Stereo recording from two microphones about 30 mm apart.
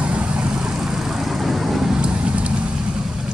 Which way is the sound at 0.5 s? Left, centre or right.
Right.